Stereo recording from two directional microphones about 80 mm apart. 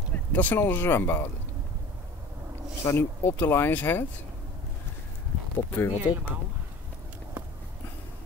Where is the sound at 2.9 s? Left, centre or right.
Left.